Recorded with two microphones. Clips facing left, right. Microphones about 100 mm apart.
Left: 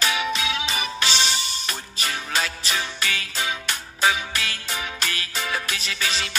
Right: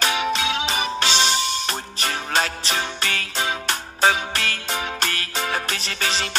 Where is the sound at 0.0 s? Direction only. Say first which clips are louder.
Right 3 dB; 35° right (ahead or behind).